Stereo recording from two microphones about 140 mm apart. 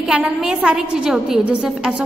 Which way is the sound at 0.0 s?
5° right (ahead or behind).